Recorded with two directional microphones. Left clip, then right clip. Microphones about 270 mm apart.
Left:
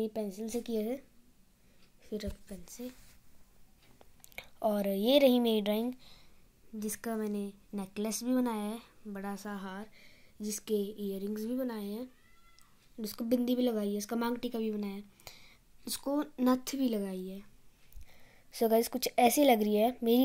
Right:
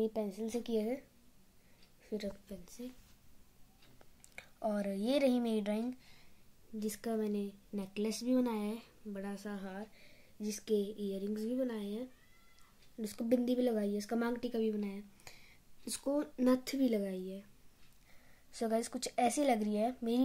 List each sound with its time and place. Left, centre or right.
0.0 s a woman's voice: centre
2.0 s a woman's voice: centre
4.4 s a woman's voice: centre
18.5 s a woman's voice: centre